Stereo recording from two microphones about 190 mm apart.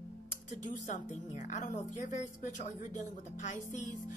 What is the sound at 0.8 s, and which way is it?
Speech, 40° left (ahead or behind).